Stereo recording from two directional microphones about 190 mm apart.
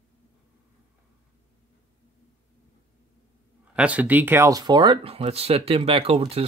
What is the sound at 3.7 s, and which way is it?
Speech, 5° right (ahead or behind).